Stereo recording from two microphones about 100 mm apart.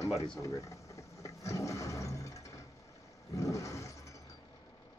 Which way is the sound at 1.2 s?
30° left (ahead or behind).